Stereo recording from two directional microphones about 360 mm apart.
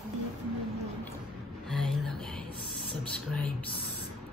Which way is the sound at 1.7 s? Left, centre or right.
Centre.